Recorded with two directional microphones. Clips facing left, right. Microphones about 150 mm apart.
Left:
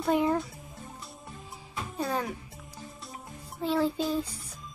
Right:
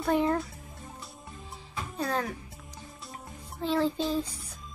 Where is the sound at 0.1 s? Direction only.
10° left (ahead or behind).